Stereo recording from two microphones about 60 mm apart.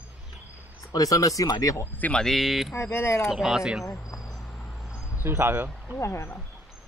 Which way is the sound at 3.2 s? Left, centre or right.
Centre.